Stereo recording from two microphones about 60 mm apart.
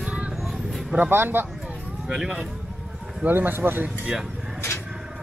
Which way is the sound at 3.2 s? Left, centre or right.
Right.